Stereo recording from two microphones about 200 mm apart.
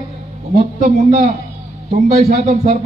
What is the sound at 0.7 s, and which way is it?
Speech, 40° right (ahead or behind).